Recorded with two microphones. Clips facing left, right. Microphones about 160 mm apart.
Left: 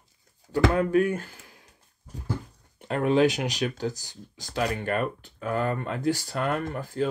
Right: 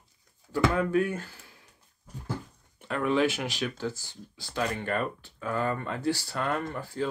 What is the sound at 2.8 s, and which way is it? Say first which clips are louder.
Speech: left 4 dB; 40° left (ahead or behind).